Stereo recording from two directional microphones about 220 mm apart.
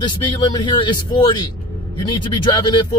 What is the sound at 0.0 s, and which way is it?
A man's voice, 20° left (ahead or behind).